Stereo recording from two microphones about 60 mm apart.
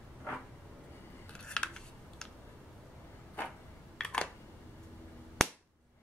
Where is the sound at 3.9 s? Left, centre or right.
Centre.